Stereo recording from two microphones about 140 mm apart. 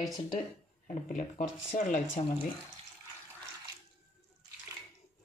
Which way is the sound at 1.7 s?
60° left (ahead or behind).